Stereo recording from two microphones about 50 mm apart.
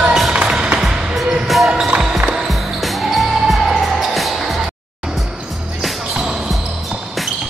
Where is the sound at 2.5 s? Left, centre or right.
Centre.